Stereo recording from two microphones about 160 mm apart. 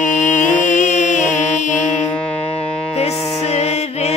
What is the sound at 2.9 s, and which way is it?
Music, 40° left (ahead or behind).